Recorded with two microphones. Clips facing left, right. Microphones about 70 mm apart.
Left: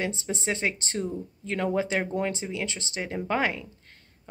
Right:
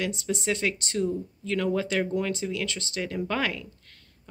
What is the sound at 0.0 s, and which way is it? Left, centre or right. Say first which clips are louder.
Speech: right 1 dB; left.